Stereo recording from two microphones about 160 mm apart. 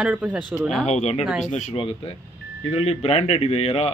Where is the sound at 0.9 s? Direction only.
45° left (ahead or behind).